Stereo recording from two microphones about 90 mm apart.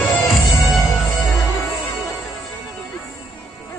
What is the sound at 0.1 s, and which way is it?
Music, centre (ahead or behind).